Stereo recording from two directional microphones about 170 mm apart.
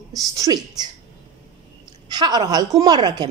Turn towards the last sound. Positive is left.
turn(degrees=-25)  # may be behind; listen again after turning